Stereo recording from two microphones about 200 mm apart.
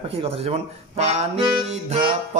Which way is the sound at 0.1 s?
30° right (ahead or behind).